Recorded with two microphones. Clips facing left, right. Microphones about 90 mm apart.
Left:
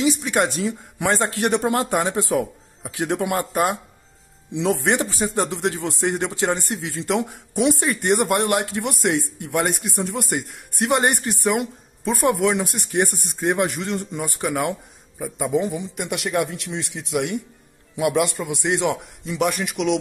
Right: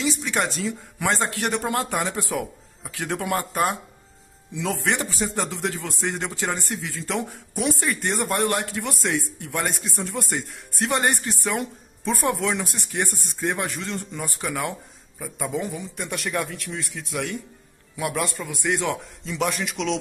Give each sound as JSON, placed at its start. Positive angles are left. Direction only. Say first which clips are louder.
{"t": 0.0, "sound": "a sound", "louder": "left 5 dB", "side_deg": 20}
{"t": 0.6, "sound": "a man's voice", "louder": "left 3 dB", "side_deg": 15}
{"t": 8.2, "sound": "a man's voice", "louder": "left 4 dB", "side_deg": 65}
{"t": 8.5, "sound": "a man's voice", "louder": "left 4 dB", "side_deg": 20}
{"t": 9.7, "sound": "a man's voice", "louder": "left 4 dB", "side_deg": 65}
{"t": 10.1, "sound": "a man's voice", "louder": "left 3 dB", "side_deg": 15}